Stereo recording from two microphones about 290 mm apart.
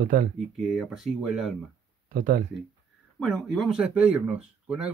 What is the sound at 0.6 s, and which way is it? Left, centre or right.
Speech, centre.